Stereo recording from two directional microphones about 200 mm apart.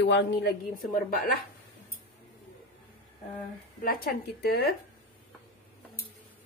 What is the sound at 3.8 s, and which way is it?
Speech, 50° left (ahead or behind).